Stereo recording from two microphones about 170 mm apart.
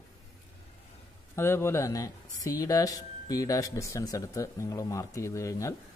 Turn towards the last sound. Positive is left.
turn(degrees=20)  # may be behind; listen again after turning